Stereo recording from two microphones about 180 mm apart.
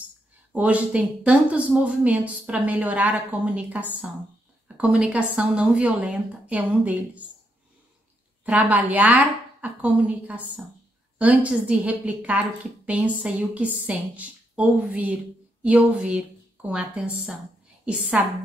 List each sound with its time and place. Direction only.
0.5 s a woman's voice: 5° right (ahead or behind)
8.5 s a woman's voice: 10° right (ahead or behind)